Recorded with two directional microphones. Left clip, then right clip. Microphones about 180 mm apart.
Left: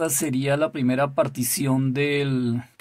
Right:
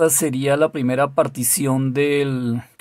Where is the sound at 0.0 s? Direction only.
25° right (ahead or behind).